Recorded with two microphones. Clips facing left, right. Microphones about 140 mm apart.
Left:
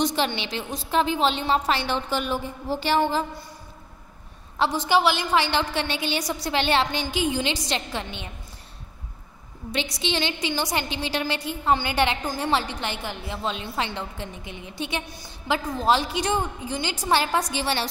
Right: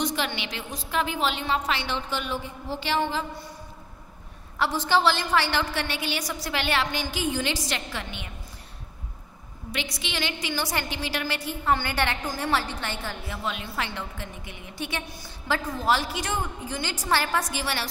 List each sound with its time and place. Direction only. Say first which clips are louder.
0.0 s a woman's voice: left 4 dB; 30° left (ahead or behind)
4.6 s a woman's voice: left 2 dB; 15° left (ahead or behind)
10.0 s a woman's voice: left 6 dB; 25° left (ahead or behind)